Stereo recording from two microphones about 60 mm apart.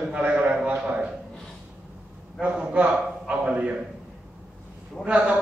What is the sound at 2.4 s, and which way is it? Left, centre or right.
A man's voice, right.